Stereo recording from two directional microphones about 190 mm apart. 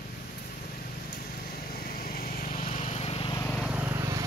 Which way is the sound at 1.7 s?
50° left (ahead or behind).